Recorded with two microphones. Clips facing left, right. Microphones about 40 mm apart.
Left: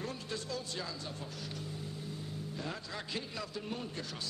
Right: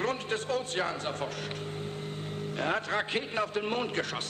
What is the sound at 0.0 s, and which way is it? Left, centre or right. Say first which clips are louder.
A man's voice: right 9 dB; right.